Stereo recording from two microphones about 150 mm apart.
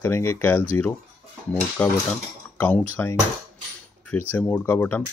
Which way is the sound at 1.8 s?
10° left (ahead or behind).